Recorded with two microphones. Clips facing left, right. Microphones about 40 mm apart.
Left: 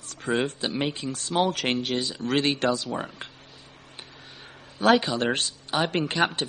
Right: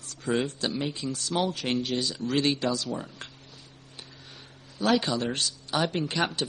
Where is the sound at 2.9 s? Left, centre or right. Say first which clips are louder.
Left 4 dB; left.